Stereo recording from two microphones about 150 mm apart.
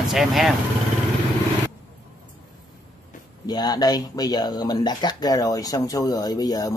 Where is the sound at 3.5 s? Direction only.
25° left (ahead or behind).